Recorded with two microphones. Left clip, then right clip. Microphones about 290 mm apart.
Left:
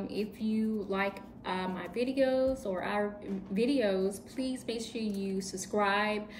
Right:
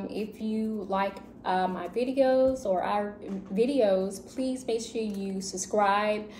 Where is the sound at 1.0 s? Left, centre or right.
Centre.